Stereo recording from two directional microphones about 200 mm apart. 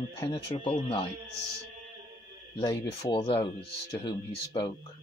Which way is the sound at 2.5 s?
20° left (ahead or behind).